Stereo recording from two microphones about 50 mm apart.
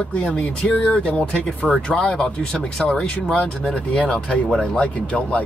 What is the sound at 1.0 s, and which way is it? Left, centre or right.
Speech, left.